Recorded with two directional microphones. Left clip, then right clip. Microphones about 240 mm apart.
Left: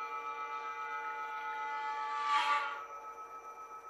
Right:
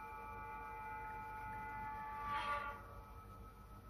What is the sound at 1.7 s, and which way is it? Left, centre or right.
Train, left.